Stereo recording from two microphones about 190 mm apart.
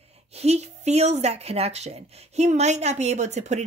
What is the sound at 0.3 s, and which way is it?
Speech, 35° right (ahead or behind).